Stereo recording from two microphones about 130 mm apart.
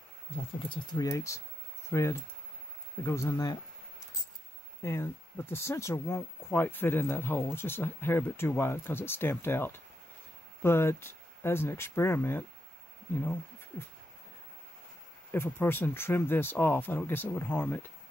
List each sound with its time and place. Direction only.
0.4 s speech: 45° left (ahead or behind)
0.9 s speech: 25° left (ahead or behind)
4.8 s speech: 15° left (ahead or behind)
15.3 s speech: 20° left (ahead or behind)